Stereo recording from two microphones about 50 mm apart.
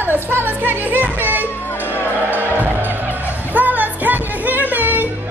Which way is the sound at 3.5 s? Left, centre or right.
Right.